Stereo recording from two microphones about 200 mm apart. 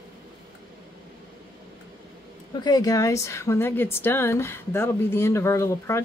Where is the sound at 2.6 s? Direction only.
20° left (ahead or behind).